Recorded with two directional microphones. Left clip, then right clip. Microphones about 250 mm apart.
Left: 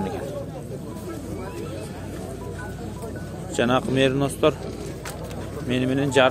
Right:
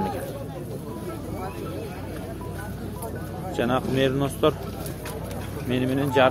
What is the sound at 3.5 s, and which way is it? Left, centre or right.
Speech, centre.